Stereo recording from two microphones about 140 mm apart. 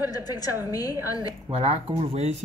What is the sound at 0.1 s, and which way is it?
A woman's voice, 25° left (ahead or behind).